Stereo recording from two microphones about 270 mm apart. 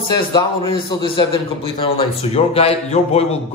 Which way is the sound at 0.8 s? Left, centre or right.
Centre.